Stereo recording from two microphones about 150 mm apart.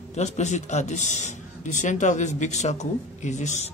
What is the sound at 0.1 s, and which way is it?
A man's voice, 50° left (ahead or behind).